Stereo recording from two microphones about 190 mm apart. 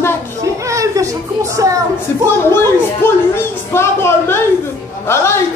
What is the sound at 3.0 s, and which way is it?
Speech, 10° left (ahead or behind).